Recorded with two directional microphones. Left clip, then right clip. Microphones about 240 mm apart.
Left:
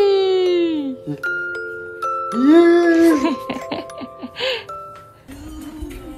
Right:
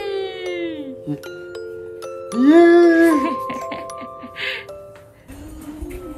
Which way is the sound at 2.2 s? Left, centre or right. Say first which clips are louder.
Right 1 dB; centre.